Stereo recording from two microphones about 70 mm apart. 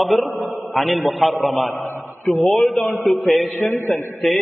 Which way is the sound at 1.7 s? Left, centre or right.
Left.